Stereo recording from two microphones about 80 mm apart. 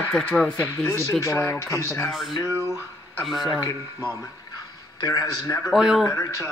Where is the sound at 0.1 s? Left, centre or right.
Centre.